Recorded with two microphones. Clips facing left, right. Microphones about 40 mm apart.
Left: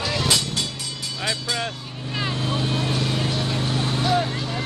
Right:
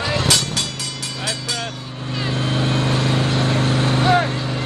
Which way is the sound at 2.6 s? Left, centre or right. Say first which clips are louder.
Right 6 dB; right.